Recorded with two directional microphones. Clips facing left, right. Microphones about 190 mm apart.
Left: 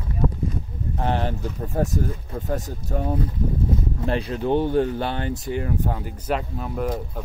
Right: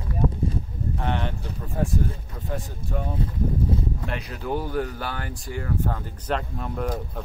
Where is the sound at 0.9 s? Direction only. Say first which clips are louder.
Left 4 dB; 35° left (ahead or behind).